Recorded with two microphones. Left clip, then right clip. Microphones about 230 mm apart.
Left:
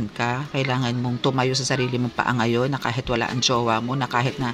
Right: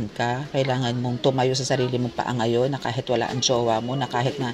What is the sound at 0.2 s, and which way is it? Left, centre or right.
Speech, centre.